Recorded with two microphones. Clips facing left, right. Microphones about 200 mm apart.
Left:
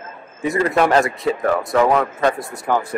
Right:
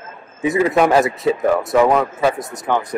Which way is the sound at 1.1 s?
20° right (ahead or behind).